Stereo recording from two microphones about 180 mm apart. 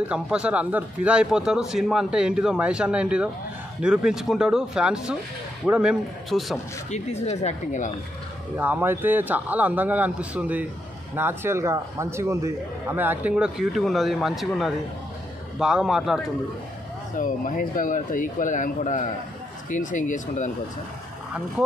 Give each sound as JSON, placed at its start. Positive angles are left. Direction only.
{"t": 0.0, "sound": "speech", "side_deg": -5}
{"t": 6.9, "sound": "speech", "side_deg": 40}
{"t": 8.5, "sound": "a man's voice", "side_deg": -10}
{"t": 17.2, "sound": "speech", "side_deg": 50}